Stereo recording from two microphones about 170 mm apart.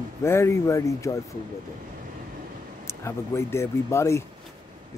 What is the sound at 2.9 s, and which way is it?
Speech, 15° left (ahead or behind).